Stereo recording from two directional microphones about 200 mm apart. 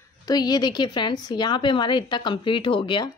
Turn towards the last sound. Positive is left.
turn(degrees=25)  # may be behind; listen again after turning